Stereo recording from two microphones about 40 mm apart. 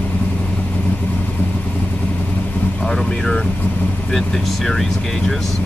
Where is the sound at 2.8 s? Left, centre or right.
Centre.